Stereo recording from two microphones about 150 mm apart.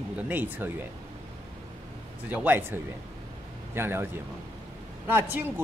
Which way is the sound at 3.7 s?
15° right (ahead or behind).